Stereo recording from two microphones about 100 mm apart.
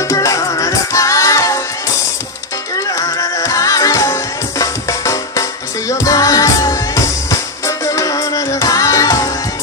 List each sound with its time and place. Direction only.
0.1 s music: 30° left (ahead or behind)
3.0 s music: 35° left (ahead or behind)